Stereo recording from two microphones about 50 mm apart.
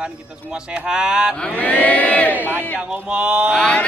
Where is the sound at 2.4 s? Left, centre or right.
Right.